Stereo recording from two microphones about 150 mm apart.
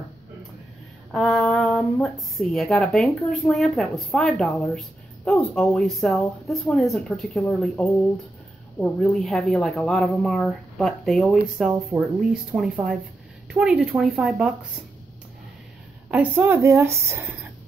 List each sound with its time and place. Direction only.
1.1 s speech: centre (ahead or behind)
8.7 s speech: 5° left (ahead or behind)
16.1 s a woman's voice: 10° right (ahead or behind)